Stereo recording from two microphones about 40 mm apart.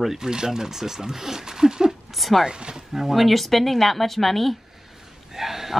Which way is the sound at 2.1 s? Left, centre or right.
Centre.